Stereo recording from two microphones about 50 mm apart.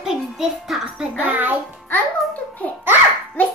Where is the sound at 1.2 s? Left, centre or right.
Right.